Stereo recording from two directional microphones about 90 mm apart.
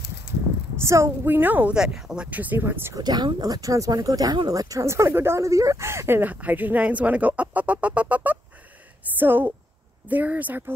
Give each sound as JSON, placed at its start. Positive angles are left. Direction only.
{"t": 0.7, "sound": "speech", "side_deg": -30}
{"t": 1.8, "sound": "speech", "side_deg": -5}
{"t": 2.2, "sound": "speech", "side_deg": -20}
{"t": 3.0, "sound": "speech", "side_deg": -50}